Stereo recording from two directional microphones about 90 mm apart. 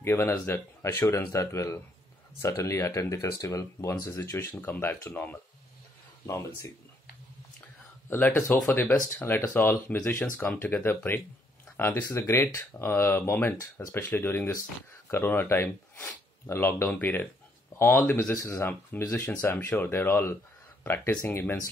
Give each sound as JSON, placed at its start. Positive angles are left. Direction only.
{"t": 0.0, "sound": "speech", "side_deg": 30}
{"t": 1.3, "sound": "speech", "side_deg": 35}
{"t": 4.5, "sound": "speech", "side_deg": 20}
{"t": 8.1, "sound": "speech", "side_deg": 20}
{"t": 9.2, "sound": "speech", "side_deg": 25}